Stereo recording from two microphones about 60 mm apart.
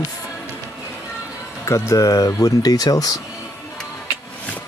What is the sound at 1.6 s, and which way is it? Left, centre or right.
Speech, left.